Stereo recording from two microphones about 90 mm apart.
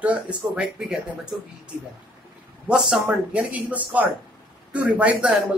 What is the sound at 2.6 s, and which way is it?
Speech, 10° right (ahead or behind).